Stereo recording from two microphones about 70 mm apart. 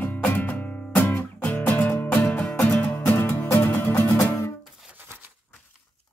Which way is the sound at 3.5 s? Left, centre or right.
Left.